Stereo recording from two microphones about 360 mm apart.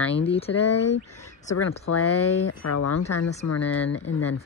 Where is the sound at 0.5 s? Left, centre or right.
Left.